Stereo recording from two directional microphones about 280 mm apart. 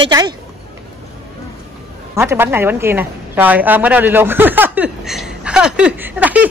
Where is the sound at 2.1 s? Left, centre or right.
Centre.